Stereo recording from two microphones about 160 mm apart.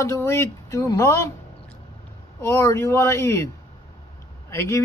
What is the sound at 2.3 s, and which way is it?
Speech, 15° left (ahead or behind).